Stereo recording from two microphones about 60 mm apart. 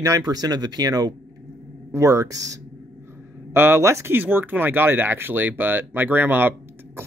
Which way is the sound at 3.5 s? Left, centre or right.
Right.